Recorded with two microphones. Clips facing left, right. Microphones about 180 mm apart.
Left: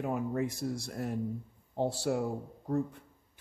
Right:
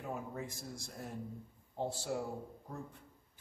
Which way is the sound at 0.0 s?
70° left (ahead or behind).